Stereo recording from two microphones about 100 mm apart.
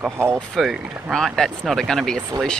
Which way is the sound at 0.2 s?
25° right (ahead or behind).